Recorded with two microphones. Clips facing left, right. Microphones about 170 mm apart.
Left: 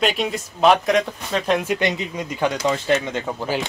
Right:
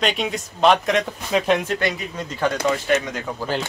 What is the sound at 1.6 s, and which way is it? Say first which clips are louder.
Speech: left 2 dB; 20° left (ahead or behind).